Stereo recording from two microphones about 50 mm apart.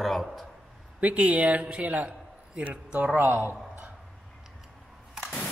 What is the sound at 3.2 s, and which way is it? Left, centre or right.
Speech, right.